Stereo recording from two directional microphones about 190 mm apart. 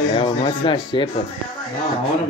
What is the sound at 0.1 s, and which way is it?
Speech, 25° left (ahead or behind).